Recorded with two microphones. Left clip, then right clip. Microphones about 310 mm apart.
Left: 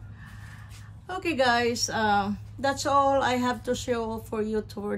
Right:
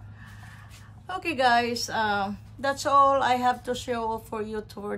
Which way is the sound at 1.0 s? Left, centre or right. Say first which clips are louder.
Right 1 dB; centre.